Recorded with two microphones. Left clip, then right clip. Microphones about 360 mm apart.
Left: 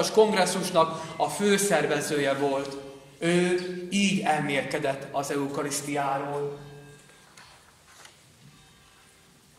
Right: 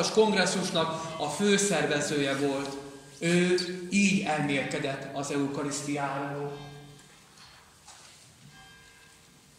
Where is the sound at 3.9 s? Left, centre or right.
Left.